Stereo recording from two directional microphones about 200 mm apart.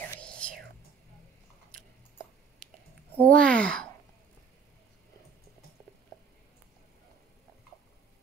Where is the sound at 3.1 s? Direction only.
10° left (ahead or behind).